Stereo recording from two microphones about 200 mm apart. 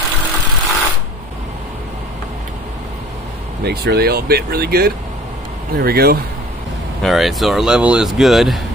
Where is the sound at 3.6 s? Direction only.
55° right (ahead or behind).